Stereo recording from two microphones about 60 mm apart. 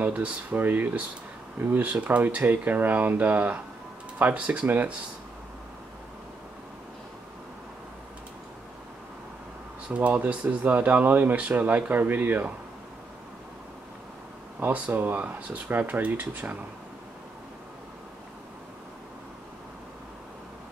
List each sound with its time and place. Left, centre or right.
0.1 s speech: right
9.8 s speech: right
14.6 s speech: right